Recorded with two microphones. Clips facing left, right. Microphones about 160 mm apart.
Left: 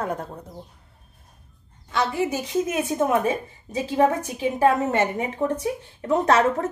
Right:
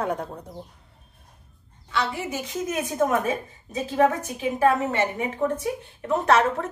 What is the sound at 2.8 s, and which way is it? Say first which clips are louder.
Speech: even; 30° left (ahead or behind).